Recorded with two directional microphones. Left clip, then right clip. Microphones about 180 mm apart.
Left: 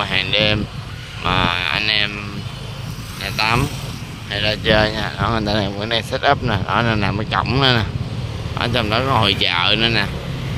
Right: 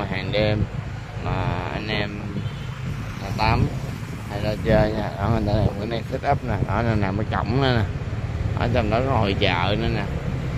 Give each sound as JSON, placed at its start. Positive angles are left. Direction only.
{"t": 0.3, "sound": "speech", "side_deg": 0}
{"t": 3.3, "sound": "speech", "side_deg": 5}